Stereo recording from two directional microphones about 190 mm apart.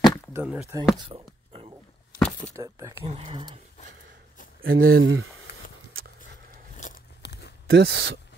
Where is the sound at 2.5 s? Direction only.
15° right (ahead or behind).